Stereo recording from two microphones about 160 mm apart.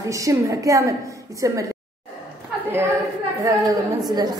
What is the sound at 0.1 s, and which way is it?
Speech, 20° right (ahead or behind).